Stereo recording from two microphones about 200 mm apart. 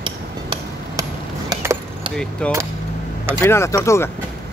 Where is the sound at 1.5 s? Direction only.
15° right (ahead or behind).